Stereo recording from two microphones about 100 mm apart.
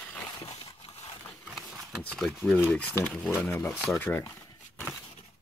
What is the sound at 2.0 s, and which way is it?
Speech, 5° left (ahead or behind).